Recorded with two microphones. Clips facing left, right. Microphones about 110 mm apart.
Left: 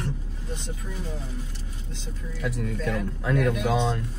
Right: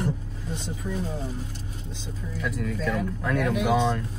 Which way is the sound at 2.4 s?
30° left (ahead or behind).